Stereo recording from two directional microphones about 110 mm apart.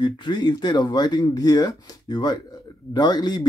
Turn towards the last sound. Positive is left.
turn(degrees=40)  # may be behind; listen again after turning